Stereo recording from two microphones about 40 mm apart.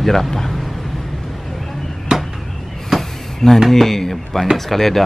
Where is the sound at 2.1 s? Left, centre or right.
Centre.